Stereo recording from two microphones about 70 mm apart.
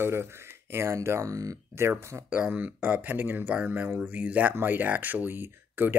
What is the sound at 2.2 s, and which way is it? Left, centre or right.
Speech, centre.